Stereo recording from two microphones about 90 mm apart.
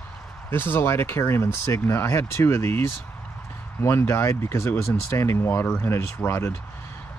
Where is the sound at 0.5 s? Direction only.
25° left (ahead or behind).